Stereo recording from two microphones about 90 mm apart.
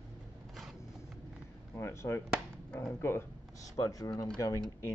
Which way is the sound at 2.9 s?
25° left (ahead or behind).